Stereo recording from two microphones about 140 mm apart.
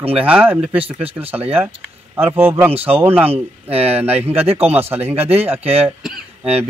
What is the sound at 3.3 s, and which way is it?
Speech, 45° right (ahead or behind).